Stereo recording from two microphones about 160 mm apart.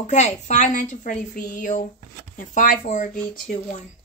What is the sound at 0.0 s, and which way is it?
A woman's voice, 45° left (ahead or behind).